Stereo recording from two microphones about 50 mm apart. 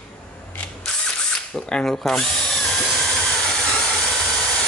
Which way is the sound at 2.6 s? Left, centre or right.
Centre.